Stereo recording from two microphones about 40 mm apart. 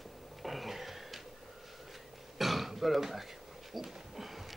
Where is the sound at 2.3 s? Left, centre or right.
Centre.